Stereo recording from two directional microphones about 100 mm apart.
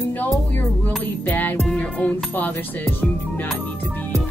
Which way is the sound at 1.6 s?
Centre (ahead or behind).